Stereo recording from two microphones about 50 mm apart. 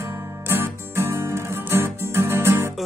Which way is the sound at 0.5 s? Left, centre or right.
Right.